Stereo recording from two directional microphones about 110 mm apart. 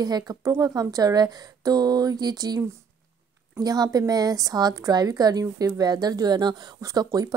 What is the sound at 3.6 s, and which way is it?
A woman's voice, 35° right (ahead or behind).